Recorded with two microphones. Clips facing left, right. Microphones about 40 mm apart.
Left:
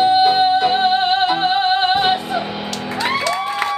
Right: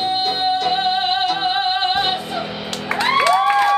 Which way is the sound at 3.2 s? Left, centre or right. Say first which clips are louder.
Right 5 dB; right.